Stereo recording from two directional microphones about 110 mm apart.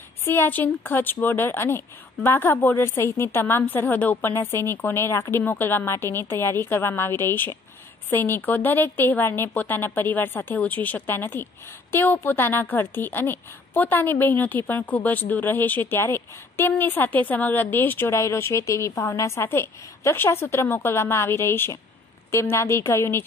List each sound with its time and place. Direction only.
0.2 s a woman's voice: 20° left (ahead or behind)